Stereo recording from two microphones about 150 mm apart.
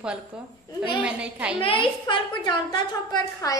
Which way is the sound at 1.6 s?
35° left (ahead or behind).